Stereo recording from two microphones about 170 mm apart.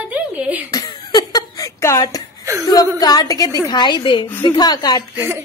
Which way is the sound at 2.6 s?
20° left (ahead or behind).